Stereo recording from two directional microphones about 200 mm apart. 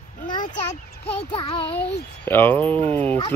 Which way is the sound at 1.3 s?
25° left (ahead or behind).